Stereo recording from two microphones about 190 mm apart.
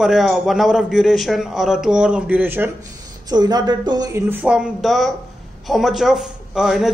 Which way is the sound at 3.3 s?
20° right (ahead or behind).